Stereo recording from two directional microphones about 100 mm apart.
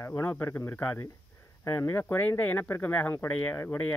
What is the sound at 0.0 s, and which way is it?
Speech, 25° left (ahead or behind).